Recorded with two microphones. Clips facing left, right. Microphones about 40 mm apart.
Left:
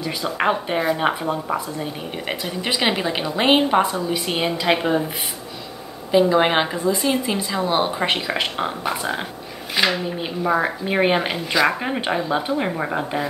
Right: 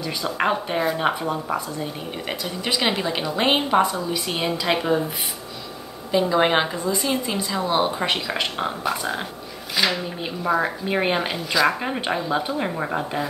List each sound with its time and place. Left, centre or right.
0.4 s a woman's voice: centre
3.8 s a woman's voice: left
6.1 s a woman's voice: centre
6.8 s a woman's voice: left
10.0 s a woman's voice: centre